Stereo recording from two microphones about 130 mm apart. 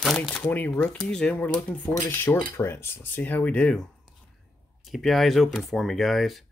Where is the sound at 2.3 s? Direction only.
20° left (ahead or behind).